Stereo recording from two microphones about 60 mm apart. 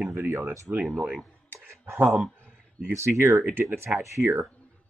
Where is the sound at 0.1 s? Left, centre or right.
Right.